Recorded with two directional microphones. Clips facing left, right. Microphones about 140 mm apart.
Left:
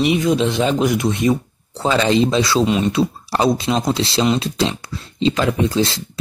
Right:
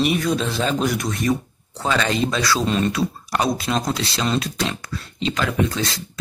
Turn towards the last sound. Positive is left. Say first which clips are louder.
# left 4 dB
turn(degrees=30)  # may be behind; listen again after turning